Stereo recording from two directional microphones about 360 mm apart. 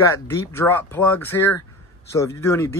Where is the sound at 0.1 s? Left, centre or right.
Centre.